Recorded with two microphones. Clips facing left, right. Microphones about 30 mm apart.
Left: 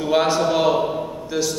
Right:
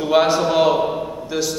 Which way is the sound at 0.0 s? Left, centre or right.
Centre.